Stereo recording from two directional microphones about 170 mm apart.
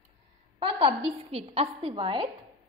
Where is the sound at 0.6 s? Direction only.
30° right (ahead or behind).